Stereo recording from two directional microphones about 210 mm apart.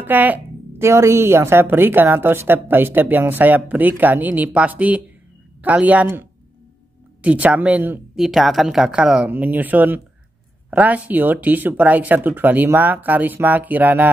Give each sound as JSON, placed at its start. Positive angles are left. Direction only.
{"t": 0.0, "sound": "a woman's voice", "side_deg": -10}